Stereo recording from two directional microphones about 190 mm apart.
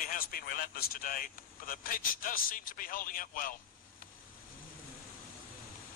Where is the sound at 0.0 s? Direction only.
50° left (ahead or behind).